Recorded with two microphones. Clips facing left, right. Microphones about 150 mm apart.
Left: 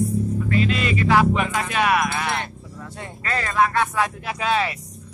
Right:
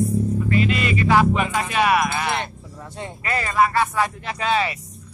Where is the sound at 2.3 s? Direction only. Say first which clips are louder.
Right 1 dB; 20° right (ahead or behind).